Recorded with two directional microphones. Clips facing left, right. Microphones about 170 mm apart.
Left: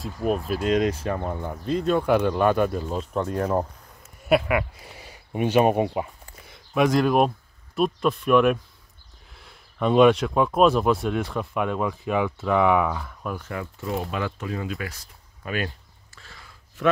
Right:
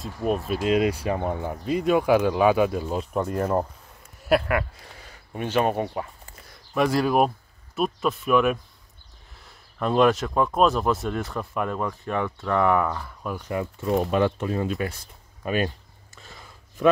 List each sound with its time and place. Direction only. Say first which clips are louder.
0.0 s speech: even; centre (ahead or behind)
13.4 s speech: right 4 dB; 20° right (ahead or behind)
16.2 s whispering: right 2 dB; 20° right (ahead or behind)